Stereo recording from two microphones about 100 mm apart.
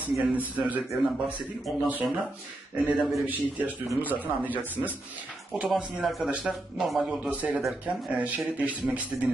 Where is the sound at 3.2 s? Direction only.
15° right (ahead or behind).